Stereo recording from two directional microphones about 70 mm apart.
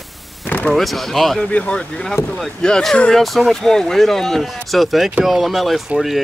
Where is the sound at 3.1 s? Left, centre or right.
Centre.